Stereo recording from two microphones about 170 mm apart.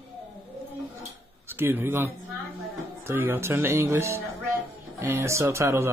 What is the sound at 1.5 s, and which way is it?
Speech, 15° right (ahead or behind).